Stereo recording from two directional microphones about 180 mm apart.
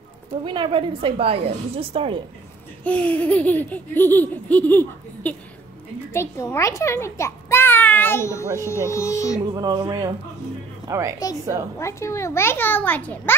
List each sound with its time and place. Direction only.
0.5 s a woman's voice: 25° right (ahead or behind)
2.8 s laughter: 10° left (ahead or behind)
6.1 s a child's voice: 15° left (ahead or behind)
8.6 s laughter: 15° left (ahead or behind)
9.4 s music: 25° right (ahead or behind)
10.9 s a woman's voice: 15° right (ahead or behind)
11.8 s laughter: 15° left (ahead or behind)